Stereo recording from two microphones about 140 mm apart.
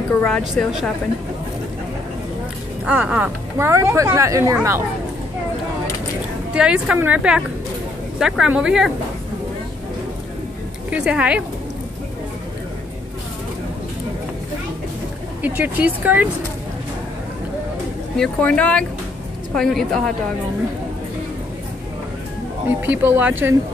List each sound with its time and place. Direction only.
0.2 s a woman's voice: 5° left (ahead or behind)
2.8 s speech: 5° right (ahead or behind)
6.5 s a woman's voice: 5° right (ahead or behind)
10.9 s a woman's voice: 10° right (ahead or behind)
15.4 s a woman's voice: 10° right (ahead or behind)
18.1 s a woman's voice: 5° left (ahead or behind)
22.7 s a woman's voice: 15° right (ahead or behind)